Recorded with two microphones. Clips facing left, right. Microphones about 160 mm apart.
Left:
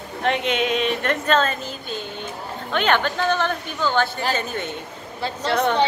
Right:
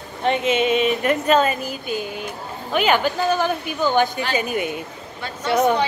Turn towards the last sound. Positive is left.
turn(degrees=-10)  # may be behind; listen again after turning